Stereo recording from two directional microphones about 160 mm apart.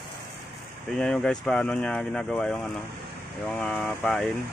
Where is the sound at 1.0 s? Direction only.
5° left (ahead or behind).